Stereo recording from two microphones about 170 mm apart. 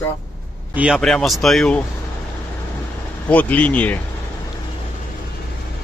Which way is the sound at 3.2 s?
10° left (ahead or behind).